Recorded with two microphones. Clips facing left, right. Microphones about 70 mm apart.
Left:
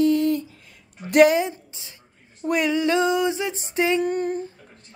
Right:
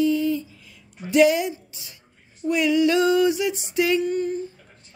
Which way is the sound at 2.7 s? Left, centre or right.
Left.